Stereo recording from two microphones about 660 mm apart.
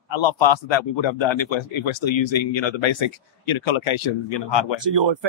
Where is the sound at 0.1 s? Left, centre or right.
Left.